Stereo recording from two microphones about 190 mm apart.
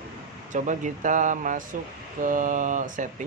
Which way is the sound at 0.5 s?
40° right (ahead or behind).